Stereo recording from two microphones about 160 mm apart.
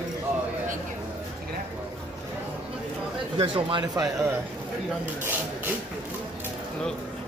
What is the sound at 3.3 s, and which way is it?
Speech, 30° right (ahead or behind).